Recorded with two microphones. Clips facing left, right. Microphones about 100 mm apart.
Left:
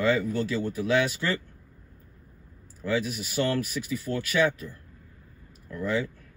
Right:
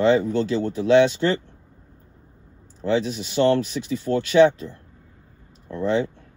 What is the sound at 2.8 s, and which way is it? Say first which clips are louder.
Speech: right 6 dB; 25° right (ahead or behind).